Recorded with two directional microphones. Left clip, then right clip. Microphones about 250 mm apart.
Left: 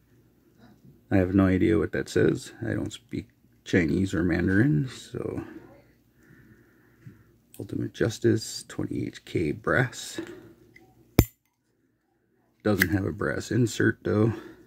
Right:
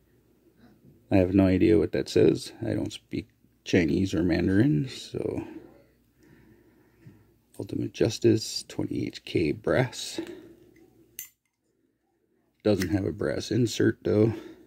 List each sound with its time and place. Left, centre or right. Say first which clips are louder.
1.0 s speech: right 1 dB; centre
7.5 s speech: right 1 dB; centre
12.9 s speech: even; centre